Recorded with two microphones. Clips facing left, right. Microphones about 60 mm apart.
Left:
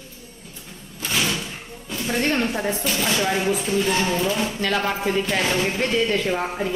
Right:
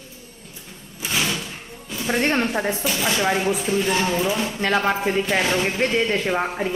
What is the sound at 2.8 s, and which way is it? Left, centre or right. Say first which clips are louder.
Speech: even; centre.